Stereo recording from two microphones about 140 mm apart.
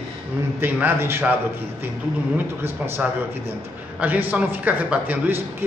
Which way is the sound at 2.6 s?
15° right (ahead or behind).